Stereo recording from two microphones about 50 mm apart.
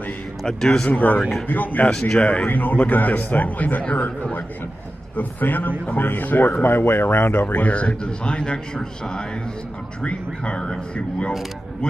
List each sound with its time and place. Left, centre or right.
0.4 s a man's voice: centre
0.8 s speech: left
1.9 s speech: centre
2.1 s a man's voice: left
7.3 s a man's voice: left